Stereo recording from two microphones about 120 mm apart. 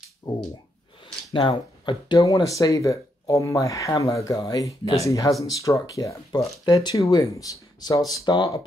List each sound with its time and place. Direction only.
0.3 s speech: 35° left (ahead or behind)